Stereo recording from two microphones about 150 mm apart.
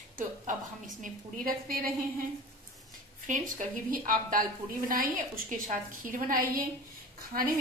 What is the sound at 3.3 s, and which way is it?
A woman's voice, 60° right (ahead or behind).